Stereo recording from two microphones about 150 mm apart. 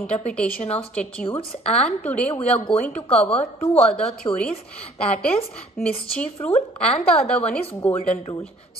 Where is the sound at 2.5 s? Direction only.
40° left (ahead or behind).